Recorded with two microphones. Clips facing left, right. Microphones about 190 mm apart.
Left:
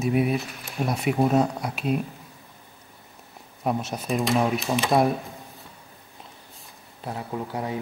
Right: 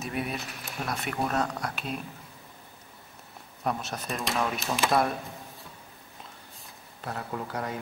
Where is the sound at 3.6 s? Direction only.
Centre (ahead or behind).